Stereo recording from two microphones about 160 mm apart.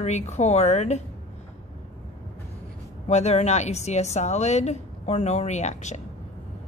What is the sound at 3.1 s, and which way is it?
A woman's voice, 45° left (ahead or behind).